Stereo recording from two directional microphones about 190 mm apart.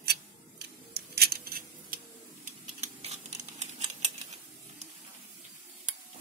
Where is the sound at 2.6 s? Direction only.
35° right (ahead or behind).